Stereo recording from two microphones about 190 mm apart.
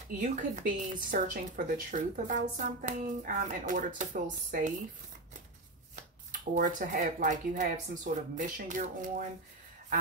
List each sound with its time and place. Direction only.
0.2 s speech: 40° right (ahead or behind)
6.5 s speech: 45° right (ahead or behind)